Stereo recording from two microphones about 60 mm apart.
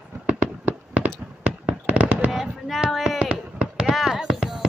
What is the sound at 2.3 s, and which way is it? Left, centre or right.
Fireworks, centre.